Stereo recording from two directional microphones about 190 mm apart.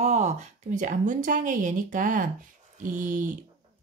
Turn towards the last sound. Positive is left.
turn(degrees=-40)  # may be behind; listen again after turning